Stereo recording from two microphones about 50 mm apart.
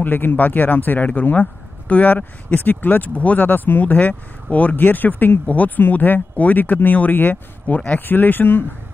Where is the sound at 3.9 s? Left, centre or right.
Left.